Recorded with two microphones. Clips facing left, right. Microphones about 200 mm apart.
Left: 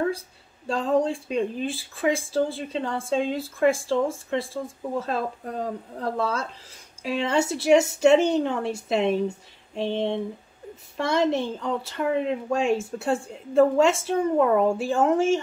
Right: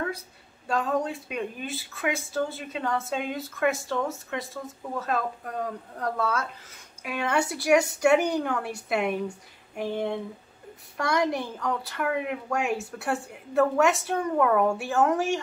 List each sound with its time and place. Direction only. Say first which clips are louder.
0.7 s a woman's voice: left 4 dB; 30° left (ahead or behind)